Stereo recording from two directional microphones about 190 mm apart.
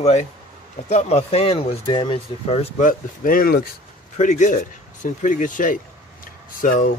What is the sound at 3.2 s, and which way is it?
Speech, 45° left (ahead or behind).